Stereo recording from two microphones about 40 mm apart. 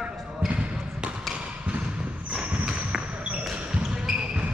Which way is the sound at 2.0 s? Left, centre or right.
Right.